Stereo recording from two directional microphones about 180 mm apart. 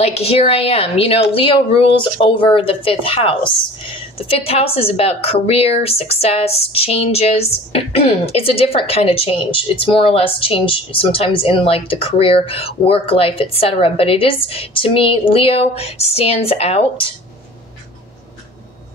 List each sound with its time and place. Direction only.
0.0 s a woman's voice: 35° left (ahead or behind)